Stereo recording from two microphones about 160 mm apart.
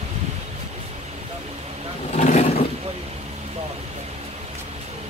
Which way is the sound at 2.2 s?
45° left (ahead or behind).